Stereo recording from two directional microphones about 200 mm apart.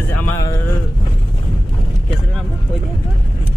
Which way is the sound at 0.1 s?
15° left (ahead or behind).